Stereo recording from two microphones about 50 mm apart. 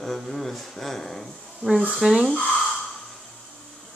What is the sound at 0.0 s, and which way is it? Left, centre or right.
Speech, centre.